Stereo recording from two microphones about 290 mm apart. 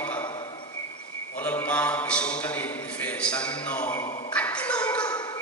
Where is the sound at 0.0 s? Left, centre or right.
Centre.